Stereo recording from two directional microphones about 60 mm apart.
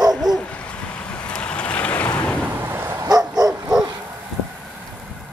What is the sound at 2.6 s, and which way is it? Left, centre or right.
Bow-wow, right.